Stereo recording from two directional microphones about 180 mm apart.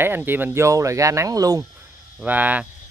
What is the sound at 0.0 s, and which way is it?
Speech, 10° right (ahead or behind).